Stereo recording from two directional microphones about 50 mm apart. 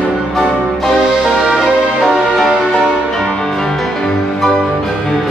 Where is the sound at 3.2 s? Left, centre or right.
Centre.